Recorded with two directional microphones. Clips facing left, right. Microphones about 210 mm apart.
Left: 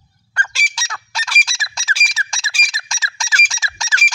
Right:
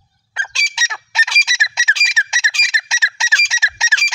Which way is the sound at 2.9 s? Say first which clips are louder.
Right 1 dB; 25° right (ahead or behind).